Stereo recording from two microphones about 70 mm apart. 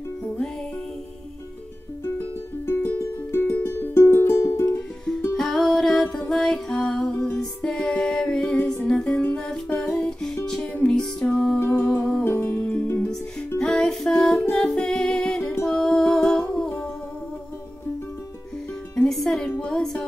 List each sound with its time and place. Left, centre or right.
2.1 s music: left
5.4 s music: centre
7.9 s a sound: centre
8.8 s music: centre
10.7 s music: left
11.6 s humming: left
12.3 s music: left
13.6 s music: centre
15.7 s humming: centre
19.0 s music: centre